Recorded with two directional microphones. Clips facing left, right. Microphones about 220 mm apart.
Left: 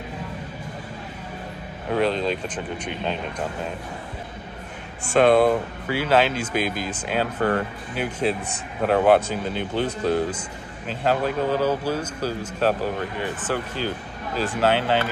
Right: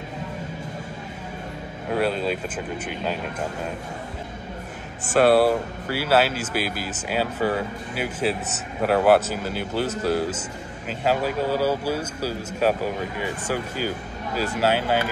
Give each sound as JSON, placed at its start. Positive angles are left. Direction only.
{"t": 1.9, "sound": "speech", "side_deg": -5}
{"t": 5.1, "sound": "a man's voice", "side_deg": -5}